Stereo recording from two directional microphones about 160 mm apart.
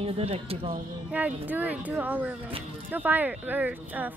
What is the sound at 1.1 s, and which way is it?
Speech, 10° right (ahead or behind).